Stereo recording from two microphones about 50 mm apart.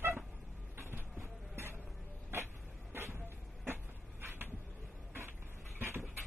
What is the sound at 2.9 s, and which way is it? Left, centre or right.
Vehicle, right.